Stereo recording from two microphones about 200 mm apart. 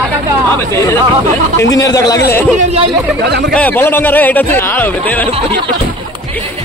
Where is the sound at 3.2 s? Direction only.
55° right (ahead or behind).